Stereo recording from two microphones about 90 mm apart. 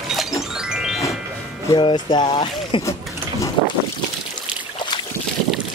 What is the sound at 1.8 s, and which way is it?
Speech, 65° left (ahead or behind).